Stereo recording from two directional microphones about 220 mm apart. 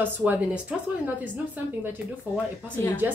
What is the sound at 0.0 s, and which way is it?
A woman's voice, 5° right (ahead or behind).